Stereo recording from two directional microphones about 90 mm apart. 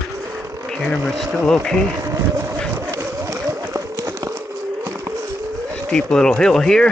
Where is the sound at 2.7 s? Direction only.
35° right (ahead or behind).